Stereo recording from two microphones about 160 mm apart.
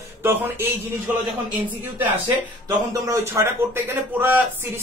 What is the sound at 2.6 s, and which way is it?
Speech, 20° right (ahead or behind).